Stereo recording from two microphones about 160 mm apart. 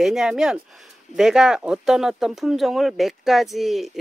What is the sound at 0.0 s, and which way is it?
Speech, 5° right (ahead or behind).